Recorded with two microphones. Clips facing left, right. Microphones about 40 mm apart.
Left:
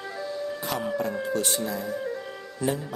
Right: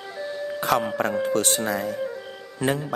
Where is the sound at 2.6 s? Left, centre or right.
Right.